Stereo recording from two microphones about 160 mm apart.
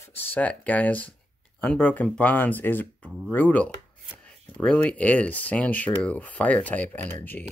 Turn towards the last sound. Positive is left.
turn(degrees=10)  # may be behind; listen again after turning